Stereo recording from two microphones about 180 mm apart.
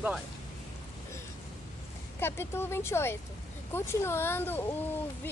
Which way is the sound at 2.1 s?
15° left (ahead or behind).